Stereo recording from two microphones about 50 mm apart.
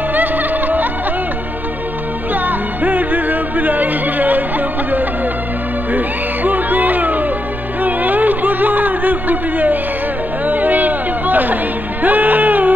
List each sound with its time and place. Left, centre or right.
0.1 s music: right
2.3 s music: right
7.8 s a sound: right
10.4 s music: right